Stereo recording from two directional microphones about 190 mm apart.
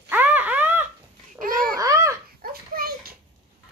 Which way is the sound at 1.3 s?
45° right (ahead or behind).